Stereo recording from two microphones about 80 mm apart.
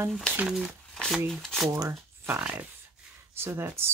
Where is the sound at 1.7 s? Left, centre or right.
Right.